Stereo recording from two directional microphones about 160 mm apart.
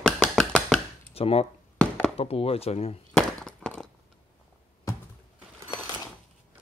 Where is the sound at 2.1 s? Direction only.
35° left (ahead or behind).